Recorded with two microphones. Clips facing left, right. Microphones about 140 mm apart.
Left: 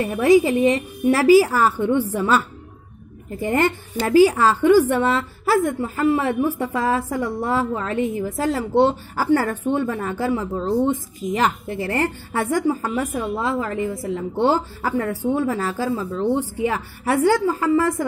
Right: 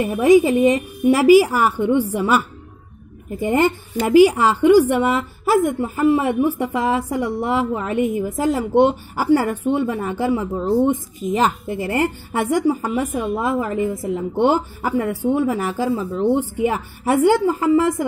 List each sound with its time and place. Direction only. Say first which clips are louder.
0.0 s a woman's voice: right 2 dB; 15° right (ahead or behind)
10.5 s speech: right 2 dB; 5° right (ahead or behind)
11.3 s a woman's voice: right 2 dB; 20° right (ahead or behind)